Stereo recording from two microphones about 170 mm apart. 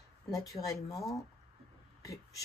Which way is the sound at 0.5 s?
20° left (ahead or behind).